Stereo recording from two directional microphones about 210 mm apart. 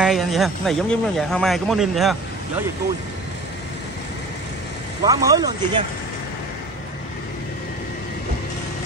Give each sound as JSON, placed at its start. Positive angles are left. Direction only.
{"t": 0.0, "sound": "speech", "side_deg": 0}
{"t": 5.0, "sound": "speech", "side_deg": -15}